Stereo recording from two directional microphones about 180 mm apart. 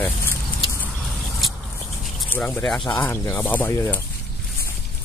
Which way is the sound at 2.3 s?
10° left (ahead or behind).